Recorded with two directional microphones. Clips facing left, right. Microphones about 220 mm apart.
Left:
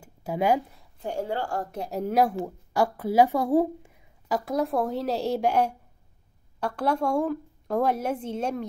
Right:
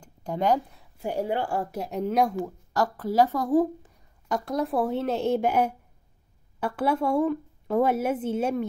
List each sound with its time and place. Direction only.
0.0 s speech: 5° left (ahead or behind)
0.9 s a woman's voice: 15° right (ahead or behind)
1.8 s speech: centre (ahead or behind)